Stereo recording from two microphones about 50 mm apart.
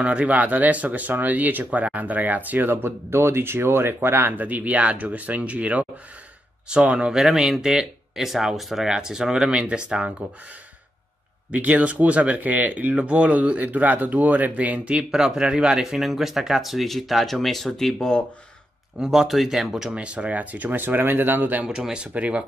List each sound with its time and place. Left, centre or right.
0.0 s speech: right
4.3 s speech: right
11.5 s speech: right; by 17.9 s centre
17.9 s speech: centre
18.9 s speech: centre
19.9 s speech: right
21.6 s speech: centre